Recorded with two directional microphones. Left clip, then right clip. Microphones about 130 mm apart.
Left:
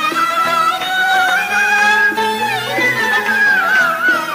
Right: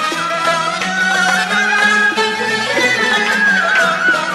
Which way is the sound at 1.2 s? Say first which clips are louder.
Even; 35° left (ahead or behind).